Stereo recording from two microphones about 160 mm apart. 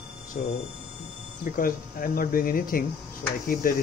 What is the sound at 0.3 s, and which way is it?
Speech, 60° left (ahead or behind).